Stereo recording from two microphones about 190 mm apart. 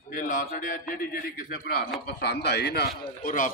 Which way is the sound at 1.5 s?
60° left (ahead or behind).